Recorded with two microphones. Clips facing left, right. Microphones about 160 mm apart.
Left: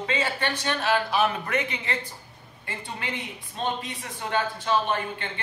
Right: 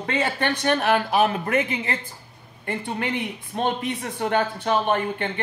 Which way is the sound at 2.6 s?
60° right (ahead or behind).